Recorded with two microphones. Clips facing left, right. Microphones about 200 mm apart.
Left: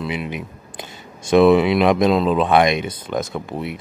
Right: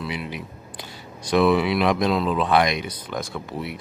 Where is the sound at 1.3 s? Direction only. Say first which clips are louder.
Left 6 dB; 25° left (ahead or behind).